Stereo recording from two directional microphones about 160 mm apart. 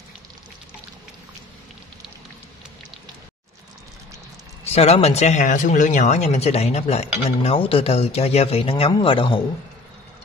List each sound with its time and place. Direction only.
4.6 s speech: 40° left (ahead or behind)